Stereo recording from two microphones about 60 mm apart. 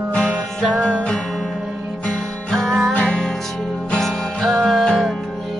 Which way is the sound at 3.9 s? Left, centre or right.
Centre.